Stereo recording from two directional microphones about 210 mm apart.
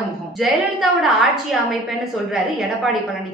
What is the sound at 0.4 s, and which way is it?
A woman's voice, centre (ahead or behind).